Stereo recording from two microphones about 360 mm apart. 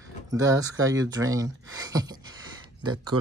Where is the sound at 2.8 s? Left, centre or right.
Right.